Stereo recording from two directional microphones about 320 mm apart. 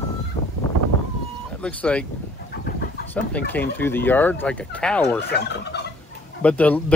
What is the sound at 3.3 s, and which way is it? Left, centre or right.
Speech, centre.